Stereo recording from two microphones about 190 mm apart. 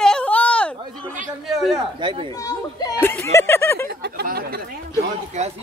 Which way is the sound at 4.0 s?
55° right (ahead or behind).